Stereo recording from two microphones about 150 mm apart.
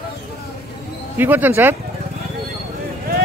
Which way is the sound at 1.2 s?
10° right (ahead or behind).